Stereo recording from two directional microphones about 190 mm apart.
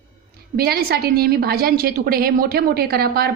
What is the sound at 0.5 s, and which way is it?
A woman's voice, 55° right (ahead or behind).